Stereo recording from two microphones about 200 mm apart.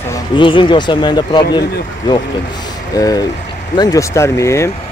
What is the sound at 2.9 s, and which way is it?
Speech, 20° left (ahead or behind).